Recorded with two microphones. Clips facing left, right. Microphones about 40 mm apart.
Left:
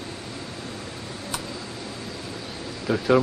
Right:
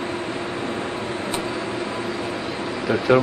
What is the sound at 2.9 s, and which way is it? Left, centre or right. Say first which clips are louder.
Speech: right 2 dB; right.